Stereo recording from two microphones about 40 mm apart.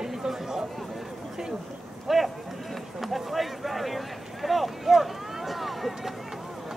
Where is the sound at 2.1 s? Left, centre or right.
Centre.